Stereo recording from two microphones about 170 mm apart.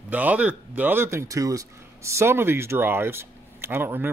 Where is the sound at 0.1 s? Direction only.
10° right (ahead or behind).